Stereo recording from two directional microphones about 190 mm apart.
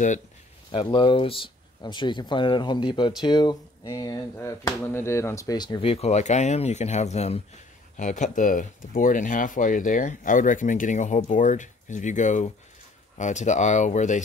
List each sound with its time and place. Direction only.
0.9 s speech: 25° left (ahead or behind)